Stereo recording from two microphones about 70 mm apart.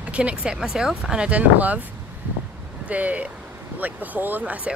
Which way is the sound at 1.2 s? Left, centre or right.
Right.